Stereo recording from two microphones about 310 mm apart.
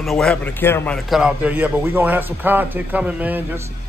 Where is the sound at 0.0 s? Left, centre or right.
Centre.